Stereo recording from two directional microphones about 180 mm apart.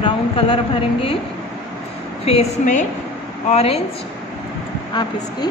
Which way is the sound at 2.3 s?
40° left (ahead or behind).